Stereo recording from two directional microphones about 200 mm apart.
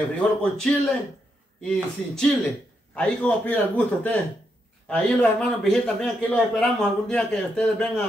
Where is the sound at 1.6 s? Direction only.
5° left (ahead or behind).